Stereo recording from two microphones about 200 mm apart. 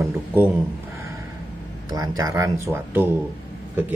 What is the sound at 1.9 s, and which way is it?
Speech, 20° right (ahead or behind).